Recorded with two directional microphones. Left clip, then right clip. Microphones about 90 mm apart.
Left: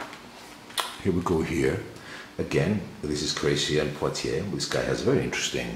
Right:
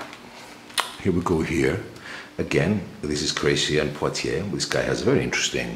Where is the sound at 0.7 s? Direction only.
15° right (ahead or behind).